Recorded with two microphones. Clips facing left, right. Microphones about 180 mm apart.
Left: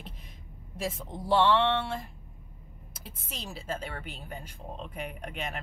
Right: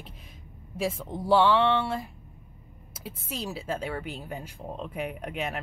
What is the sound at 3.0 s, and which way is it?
Speech, 5° right (ahead or behind).